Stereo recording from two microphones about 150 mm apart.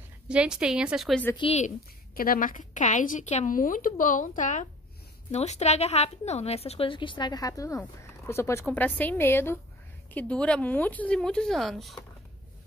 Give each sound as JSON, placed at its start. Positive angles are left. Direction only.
{"t": 0.3, "sound": "a woman's voice", "side_deg": -5}
{"t": 1.3, "sound": "a woman's voice", "side_deg": 40}
{"t": 2.1, "sound": "a woman's voice", "side_deg": 70}